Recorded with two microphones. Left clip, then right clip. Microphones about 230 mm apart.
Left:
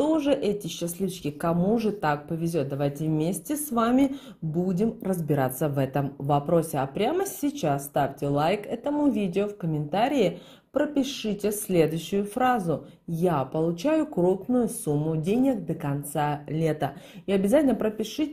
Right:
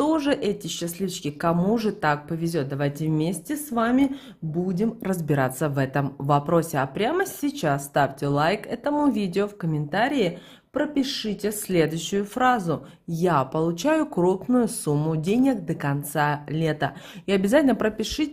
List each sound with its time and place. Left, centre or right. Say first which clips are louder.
0.2 s speech: even; right